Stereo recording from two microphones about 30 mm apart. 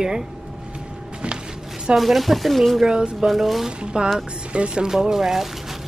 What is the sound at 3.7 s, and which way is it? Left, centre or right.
Speech, right.